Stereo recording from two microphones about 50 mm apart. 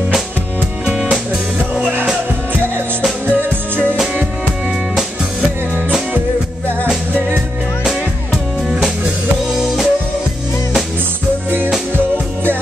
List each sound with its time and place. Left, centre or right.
3.3 s music: right
7.2 s music: right
9.5 s music: centre